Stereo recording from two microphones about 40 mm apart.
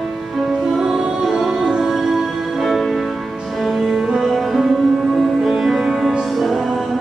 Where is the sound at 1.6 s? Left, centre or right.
Centre.